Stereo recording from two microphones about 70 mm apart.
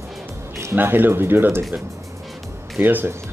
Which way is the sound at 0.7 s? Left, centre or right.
Right.